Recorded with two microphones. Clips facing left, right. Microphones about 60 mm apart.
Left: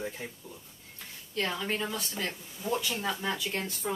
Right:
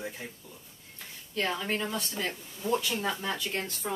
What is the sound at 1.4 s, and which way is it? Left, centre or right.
Speech, centre.